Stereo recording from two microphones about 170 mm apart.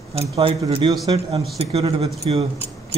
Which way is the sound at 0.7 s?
30° right (ahead or behind).